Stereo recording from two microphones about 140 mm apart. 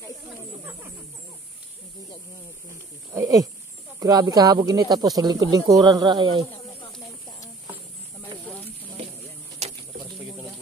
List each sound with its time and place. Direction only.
3.1 s speech: 25° right (ahead or behind)
9.6 s bird: 50° right (ahead or behind)